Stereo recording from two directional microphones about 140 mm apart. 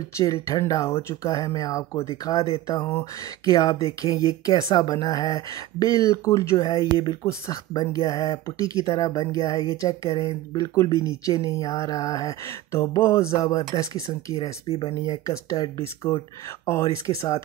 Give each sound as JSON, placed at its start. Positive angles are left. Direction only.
{"t": 0.2, "sound": "speech", "side_deg": 25}
{"t": 14.7, "sound": "speech", "side_deg": 45}
{"t": 15.0, "sound": "speech", "side_deg": 25}